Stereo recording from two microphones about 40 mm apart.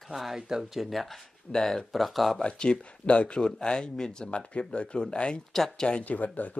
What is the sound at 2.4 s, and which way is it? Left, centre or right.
Speech, left.